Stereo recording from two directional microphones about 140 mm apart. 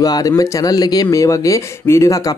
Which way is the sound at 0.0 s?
25° left (ahead or behind).